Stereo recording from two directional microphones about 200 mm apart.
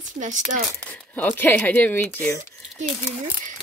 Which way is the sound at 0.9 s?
10° left (ahead or behind).